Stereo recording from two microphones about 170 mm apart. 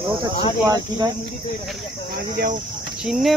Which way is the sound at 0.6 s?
20° right (ahead or behind).